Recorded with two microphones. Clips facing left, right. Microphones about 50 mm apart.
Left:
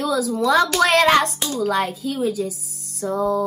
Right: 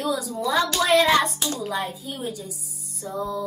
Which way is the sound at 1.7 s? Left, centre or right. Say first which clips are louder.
Left 7 dB; left.